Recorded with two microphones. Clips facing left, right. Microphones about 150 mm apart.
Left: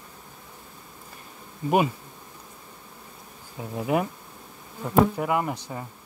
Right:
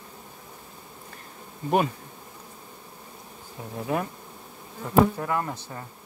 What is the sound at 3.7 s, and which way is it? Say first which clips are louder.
Speech: left 3 dB; 15° left (ahead or behind).